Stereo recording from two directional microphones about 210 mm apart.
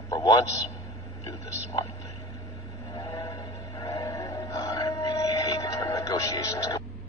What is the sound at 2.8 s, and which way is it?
Music, 15° left (ahead or behind).